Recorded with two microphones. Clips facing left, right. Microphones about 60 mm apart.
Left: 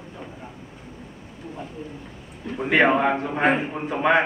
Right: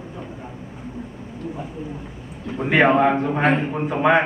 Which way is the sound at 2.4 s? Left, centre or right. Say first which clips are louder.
Right 2 dB; centre.